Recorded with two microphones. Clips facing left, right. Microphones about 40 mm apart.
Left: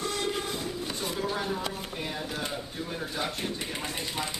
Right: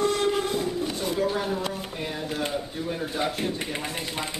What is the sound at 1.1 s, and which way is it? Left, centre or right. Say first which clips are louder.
Speech: right 5 dB; centre.